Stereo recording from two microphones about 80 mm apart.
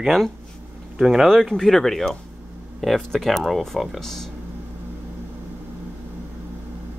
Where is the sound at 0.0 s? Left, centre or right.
Centre.